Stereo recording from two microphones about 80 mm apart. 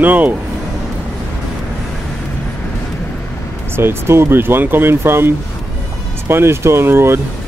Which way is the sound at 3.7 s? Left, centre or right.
Right.